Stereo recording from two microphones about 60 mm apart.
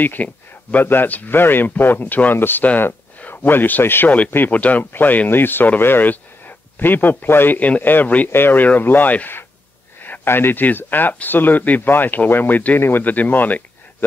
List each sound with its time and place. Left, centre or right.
0.0 s a man's voice: left
4.5 s speech: left